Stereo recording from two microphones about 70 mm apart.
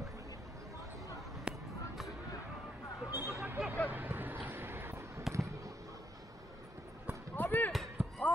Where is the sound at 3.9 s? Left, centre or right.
Right.